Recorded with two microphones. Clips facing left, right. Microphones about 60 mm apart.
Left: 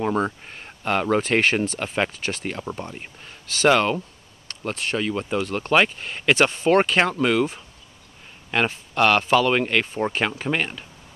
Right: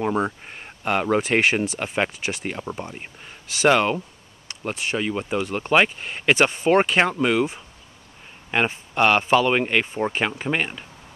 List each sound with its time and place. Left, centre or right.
0.0 s speech: centre